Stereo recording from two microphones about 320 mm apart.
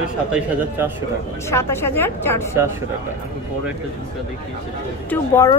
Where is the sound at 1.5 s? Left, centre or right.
Centre.